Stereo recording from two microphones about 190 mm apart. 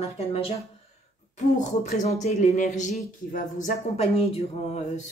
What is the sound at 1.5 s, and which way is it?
Speech, 40° left (ahead or behind).